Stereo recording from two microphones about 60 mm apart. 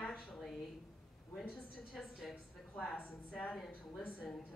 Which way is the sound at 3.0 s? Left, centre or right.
Left.